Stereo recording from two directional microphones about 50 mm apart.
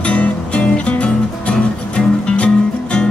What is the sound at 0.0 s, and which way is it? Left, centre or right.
Music, left.